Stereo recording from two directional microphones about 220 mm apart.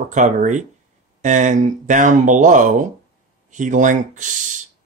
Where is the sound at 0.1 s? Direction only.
35° right (ahead or behind).